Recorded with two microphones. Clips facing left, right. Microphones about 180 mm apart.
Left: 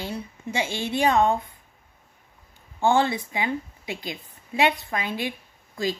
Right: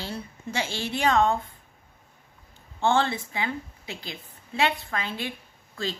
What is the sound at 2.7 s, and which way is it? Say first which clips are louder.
A woman's voice: left 3 dB; 15° left (ahead or behind).